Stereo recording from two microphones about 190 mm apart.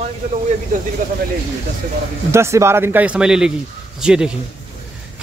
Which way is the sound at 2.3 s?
15° right (ahead or behind).